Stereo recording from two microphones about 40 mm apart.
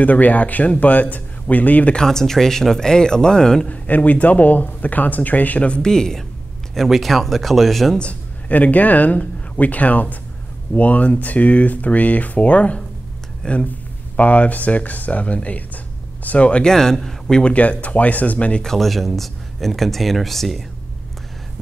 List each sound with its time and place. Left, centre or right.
0.0 s speech: left
2.0 s speech: centre
3.6 s speech: left
5.7 s speech: centre
6.7 s speech: centre
8.0 s speech: left
16.6 s speech: centre
17.4 s speech: left
18.6 s speech: centre